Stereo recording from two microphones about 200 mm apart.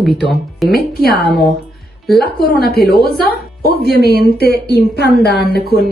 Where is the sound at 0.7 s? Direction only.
50° left (ahead or behind).